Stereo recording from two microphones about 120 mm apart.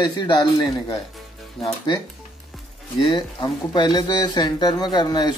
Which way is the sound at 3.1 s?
40° left (ahead or behind).